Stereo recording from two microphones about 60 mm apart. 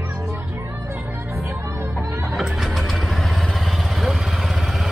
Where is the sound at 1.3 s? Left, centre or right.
Right.